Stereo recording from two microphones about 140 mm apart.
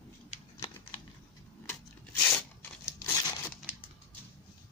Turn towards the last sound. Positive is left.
turn(degrees=25)  # may be behind; listen again after turning